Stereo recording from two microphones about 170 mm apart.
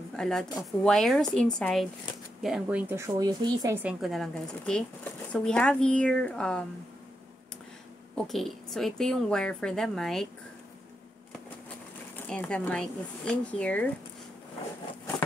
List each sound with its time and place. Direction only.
0.1 s a woman's voice: 5° left (ahead or behind); by 3.7 s 20° right (ahead or behind)
3.7 s a woman's voice: 5° right (ahead or behind)
8.3 s a woman's voice: centre (ahead or behind)
12.3 s speech: 5° left (ahead or behind)